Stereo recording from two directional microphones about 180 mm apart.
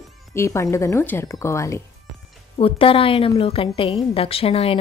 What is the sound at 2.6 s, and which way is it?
A woman's voice, 30° left (ahead or behind).